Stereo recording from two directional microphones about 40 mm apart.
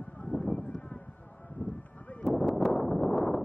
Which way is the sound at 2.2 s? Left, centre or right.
Centre.